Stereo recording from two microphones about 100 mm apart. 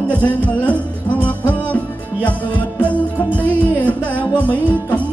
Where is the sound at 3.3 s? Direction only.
15° left (ahead or behind).